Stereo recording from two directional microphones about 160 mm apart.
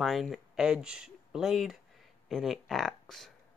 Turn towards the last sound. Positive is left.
turn(degrees=0)  # may be behind; listen again after turning